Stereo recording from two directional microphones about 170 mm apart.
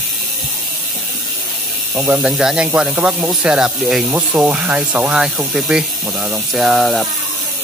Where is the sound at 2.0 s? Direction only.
5° right (ahead or behind).